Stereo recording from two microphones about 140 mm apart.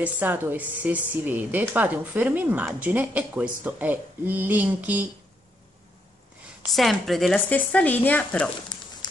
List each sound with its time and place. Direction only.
0.0 s a woman's voice: 15° right (ahead or behind)
6.7 s speech: centre (ahead or behind)
7.3 s speech: 10° left (ahead or behind)
8.7 s a sound: 30° left (ahead or behind)